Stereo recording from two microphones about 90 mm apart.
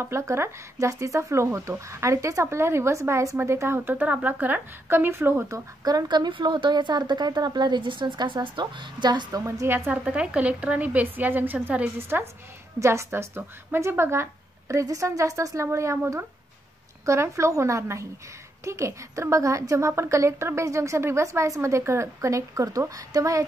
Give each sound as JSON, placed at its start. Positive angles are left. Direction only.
{"t": 0.0, "sound": "speech", "side_deg": -30}
{"t": 5.9, "sound": "a woman's voice", "side_deg": -50}
{"t": 9.4, "sound": "a woman's voice", "side_deg": -30}
{"t": 10.0, "sound": "a woman's voice", "side_deg": -15}